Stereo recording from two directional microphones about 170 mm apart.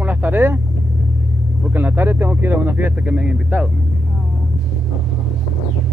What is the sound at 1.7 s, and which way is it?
Speech, 10° right (ahead or behind).